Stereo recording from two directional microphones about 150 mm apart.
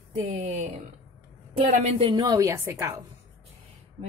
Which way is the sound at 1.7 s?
40° right (ahead or behind).